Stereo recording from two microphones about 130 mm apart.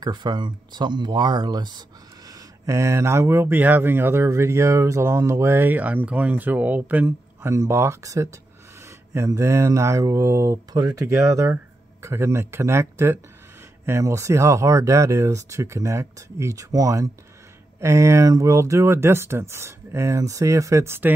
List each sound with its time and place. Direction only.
0.0 s speech: 35° right (ahead or behind)